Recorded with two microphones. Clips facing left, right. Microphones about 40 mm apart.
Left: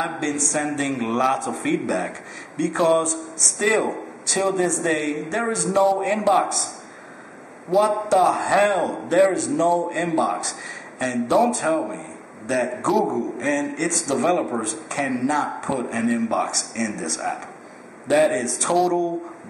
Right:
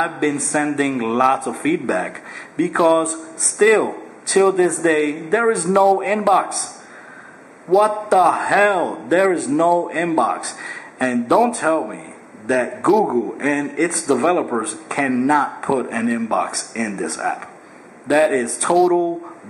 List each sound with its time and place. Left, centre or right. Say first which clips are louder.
0.2 s a man's voice: right 5 dB; centre
7.7 s a man's voice: right 4 dB; centre